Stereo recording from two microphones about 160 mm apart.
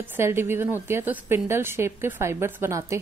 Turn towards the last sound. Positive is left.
turn(degrees=-20)  # may be behind; listen again after turning